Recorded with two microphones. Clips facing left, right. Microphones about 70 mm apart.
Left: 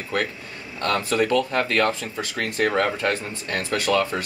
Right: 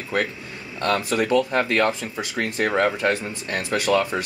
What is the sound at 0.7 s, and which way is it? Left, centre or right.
Speech, centre.